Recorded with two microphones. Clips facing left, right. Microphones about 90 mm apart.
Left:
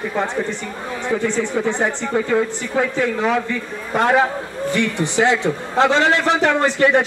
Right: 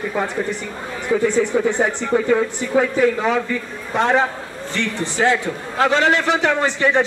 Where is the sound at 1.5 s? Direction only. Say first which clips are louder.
Right 2 dB; 5° right (ahead or behind).